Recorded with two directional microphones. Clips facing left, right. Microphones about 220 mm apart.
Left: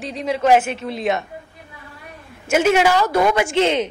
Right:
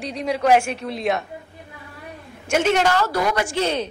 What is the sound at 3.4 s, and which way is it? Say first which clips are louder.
Speech: left 5 dB; 20° left (ahead or behind).